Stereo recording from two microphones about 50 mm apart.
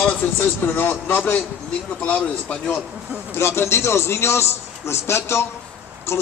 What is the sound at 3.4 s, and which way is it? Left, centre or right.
Speech, left.